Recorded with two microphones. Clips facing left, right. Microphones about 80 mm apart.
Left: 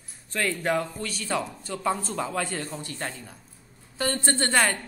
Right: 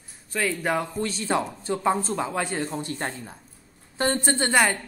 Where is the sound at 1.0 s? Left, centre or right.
Right.